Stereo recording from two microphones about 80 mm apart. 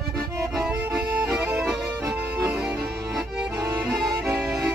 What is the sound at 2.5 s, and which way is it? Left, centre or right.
Music, centre.